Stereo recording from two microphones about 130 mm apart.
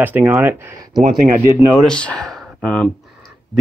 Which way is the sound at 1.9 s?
10° left (ahead or behind).